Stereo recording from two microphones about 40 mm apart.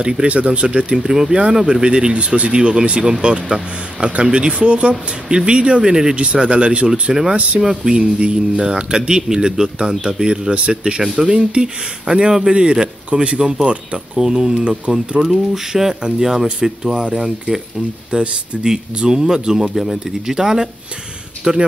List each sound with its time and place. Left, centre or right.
0.3 s speech: right
6.9 s speech: centre
10.5 s speech: right
10.8 s speech: centre
13.4 s speech: centre
21.5 s speech: right